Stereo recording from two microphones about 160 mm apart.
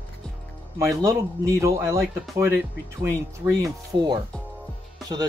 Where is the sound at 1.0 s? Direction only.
20° right (ahead or behind).